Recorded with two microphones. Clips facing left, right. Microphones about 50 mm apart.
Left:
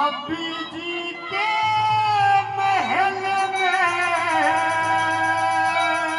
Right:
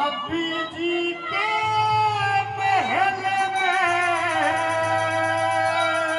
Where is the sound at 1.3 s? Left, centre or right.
Right.